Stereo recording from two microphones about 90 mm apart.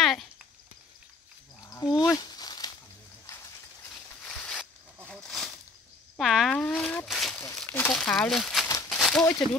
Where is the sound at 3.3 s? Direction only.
35° left (ahead or behind).